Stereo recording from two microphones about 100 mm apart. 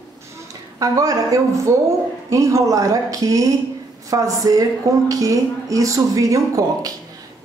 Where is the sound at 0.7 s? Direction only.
35° right (ahead or behind).